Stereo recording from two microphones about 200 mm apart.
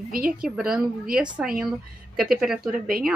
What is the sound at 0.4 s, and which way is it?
Speech, 5° right (ahead or behind).